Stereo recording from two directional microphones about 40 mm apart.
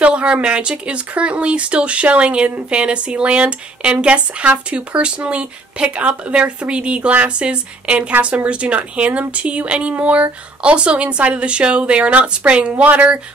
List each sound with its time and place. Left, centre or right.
0.0 s speech: right